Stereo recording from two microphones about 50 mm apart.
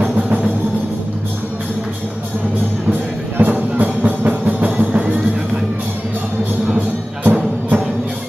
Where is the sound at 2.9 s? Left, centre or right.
Right.